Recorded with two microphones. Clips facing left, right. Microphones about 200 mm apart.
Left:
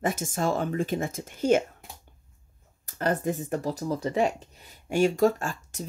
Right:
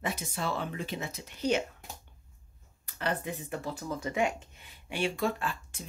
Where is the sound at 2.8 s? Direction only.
45° left (ahead or behind).